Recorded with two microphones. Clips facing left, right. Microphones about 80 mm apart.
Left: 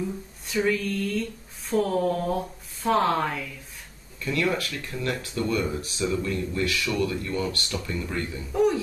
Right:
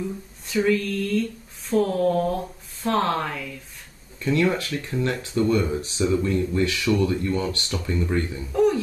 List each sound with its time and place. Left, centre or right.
0.5 s speech: centre
4.2 s speech: right